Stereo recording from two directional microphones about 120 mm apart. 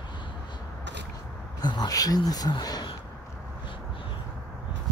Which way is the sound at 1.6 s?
35° left (ahead or behind).